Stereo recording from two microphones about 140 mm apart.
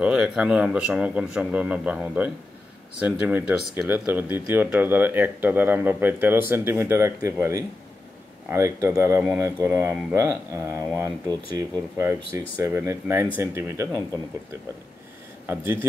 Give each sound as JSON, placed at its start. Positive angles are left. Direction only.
{"t": 0.0, "sound": "speech", "side_deg": -5}
{"t": 15.4, "sound": "speech", "side_deg": -15}